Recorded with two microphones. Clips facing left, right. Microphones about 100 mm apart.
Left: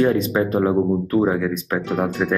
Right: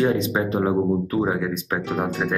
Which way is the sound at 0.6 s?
15° right (ahead or behind).